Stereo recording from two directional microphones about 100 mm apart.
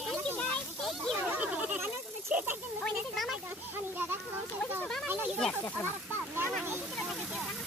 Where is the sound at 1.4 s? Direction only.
15° right (ahead or behind).